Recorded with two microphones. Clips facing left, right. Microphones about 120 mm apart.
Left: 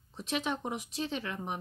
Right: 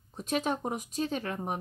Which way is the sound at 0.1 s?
45° right (ahead or behind).